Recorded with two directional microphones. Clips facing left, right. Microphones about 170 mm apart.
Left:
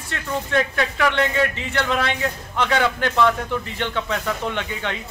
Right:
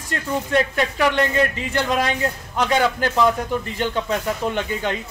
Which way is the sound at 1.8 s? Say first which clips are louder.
Right 1 dB; 35° right (ahead or behind).